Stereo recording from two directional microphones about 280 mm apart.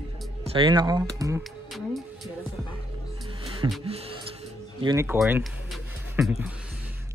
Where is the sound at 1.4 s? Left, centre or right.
Centre.